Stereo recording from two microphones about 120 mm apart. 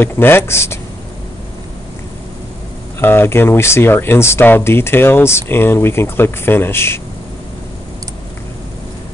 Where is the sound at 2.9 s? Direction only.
20° left (ahead or behind).